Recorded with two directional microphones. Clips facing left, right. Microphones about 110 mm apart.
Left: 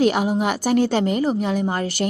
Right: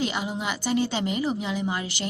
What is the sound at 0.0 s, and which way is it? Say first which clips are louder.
A woman's voice: left 10 dB; 55° left (ahead or behind).